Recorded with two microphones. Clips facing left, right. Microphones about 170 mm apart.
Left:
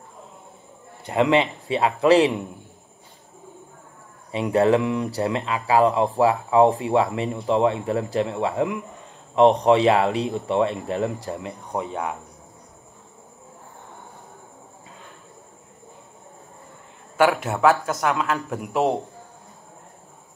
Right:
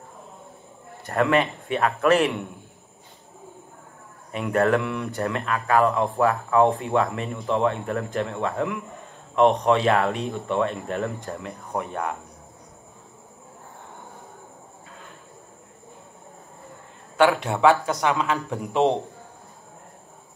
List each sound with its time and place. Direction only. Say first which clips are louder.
1.0 s speech: left 2 dB; 20° left (ahead or behind)
4.3 s speech: left 3 dB; 20° left (ahead or behind)
7.0 s speech: left 2 dB; 25° left (ahead or behind)
17.2 s speech: even; 5° left (ahead or behind)